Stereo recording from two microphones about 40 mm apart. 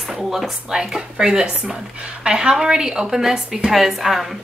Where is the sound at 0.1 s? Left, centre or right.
Centre.